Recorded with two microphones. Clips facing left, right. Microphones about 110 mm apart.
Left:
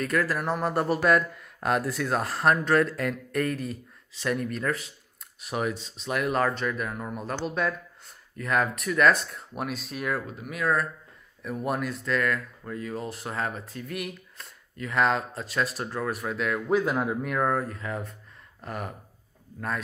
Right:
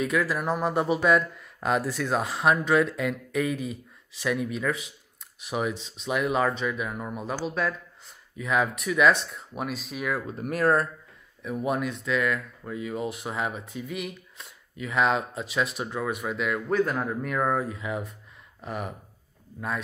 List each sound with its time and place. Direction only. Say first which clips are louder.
0.0 s speech: right 1 dB; centre (ahead or behind)
10.3 s speech: right 6 dB; 45° right (ahead or behind)
11.4 s speech: right 2 dB; centre (ahead or behind)